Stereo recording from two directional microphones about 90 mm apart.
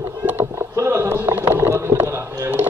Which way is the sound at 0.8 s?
30° right (ahead or behind).